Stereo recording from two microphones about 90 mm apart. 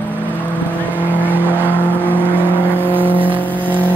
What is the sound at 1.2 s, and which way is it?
Vehicle, 20° right (ahead or behind).